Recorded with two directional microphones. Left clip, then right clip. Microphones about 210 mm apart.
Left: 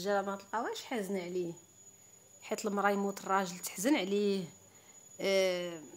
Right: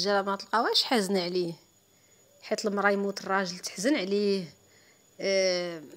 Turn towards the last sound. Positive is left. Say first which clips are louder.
# right 6 dB
turn(degrees=-25)  # may be behind; listen again after turning